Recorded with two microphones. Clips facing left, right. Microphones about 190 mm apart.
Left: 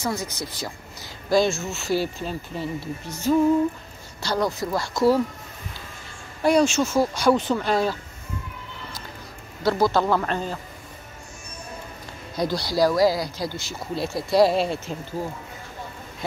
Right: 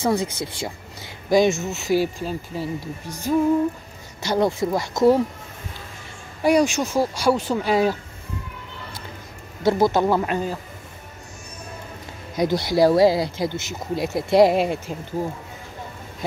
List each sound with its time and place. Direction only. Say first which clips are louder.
0.0 s speech: right 6 dB; 30° right (ahead or behind)
6.4 s speech: right 1 dB; 15° right (ahead or behind)
9.6 s speech: right 2 dB; 20° right (ahead or behind)
12.4 s speech: right 4 dB; 20° right (ahead or behind)